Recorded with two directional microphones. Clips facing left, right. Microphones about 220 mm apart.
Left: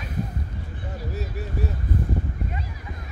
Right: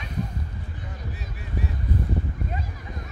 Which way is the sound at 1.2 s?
40° left (ahead or behind).